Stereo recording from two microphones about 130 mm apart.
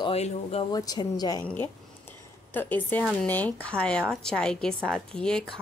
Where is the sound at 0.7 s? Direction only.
30° left (ahead or behind).